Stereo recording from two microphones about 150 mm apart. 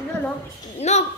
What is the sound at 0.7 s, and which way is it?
Speech, 45° left (ahead or behind).